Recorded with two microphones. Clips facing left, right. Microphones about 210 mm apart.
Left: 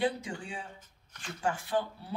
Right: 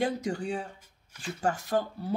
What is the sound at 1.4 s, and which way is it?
Speech, 40° right (ahead or behind).